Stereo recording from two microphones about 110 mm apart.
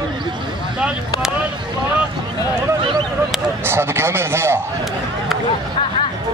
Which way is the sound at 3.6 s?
20° right (ahead or behind).